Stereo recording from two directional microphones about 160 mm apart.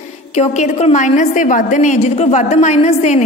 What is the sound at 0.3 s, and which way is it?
A woman's voice, 45° left (ahead or behind).